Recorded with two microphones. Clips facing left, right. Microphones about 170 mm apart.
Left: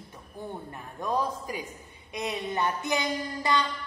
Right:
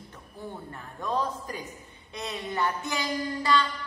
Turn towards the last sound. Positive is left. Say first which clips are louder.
# right 2 dB
turn(degrees=20)  # may be behind; listen again after turning